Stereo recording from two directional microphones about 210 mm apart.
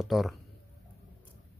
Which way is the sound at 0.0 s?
Centre (ahead or behind).